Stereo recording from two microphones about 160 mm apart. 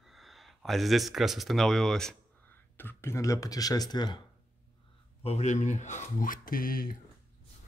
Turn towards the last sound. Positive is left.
turn(degrees=65)  # may be behind; listen again after turning